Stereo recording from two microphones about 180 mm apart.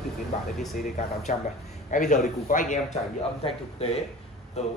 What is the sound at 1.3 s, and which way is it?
Speech, 40° left (ahead or behind).